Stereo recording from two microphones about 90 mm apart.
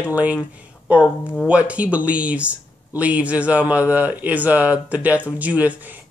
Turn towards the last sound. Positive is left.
turn(degrees=-15)  # may be behind; listen again after turning